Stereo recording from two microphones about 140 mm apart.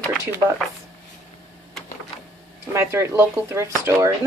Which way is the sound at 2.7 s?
20° right (ahead or behind).